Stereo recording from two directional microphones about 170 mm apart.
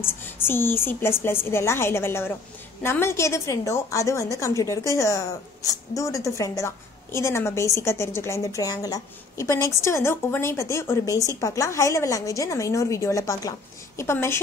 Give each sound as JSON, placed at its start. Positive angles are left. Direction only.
{"t": 0.0, "sound": "a woman's voice", "side_deg": 15}